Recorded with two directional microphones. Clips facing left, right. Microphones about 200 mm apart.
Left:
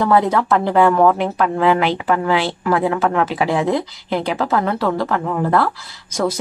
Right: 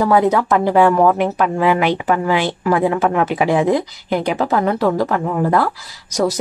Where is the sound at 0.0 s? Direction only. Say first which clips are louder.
Right 1 dB; 10° right (ahead or behind).